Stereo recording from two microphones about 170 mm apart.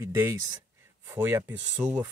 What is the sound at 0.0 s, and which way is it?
Speech, 15° right (ahead or behind).